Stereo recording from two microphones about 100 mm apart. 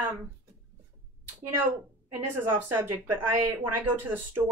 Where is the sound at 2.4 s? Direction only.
20° right (ahead or behind).